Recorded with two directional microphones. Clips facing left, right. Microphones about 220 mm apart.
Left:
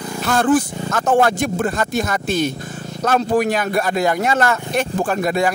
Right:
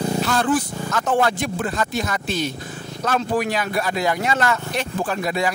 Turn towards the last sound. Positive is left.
turn(degrees=50)  # may be behind; listen again after turning